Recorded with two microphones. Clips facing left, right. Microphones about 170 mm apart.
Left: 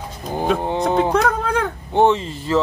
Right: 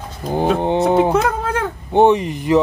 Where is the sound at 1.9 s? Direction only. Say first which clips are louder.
Right 4 dB; 15° right (ahead or behind).